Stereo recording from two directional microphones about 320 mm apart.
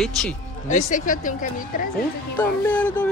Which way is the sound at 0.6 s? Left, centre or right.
Left.